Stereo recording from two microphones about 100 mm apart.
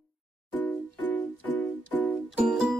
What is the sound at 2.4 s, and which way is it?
Music, 5° right (ahead or behind).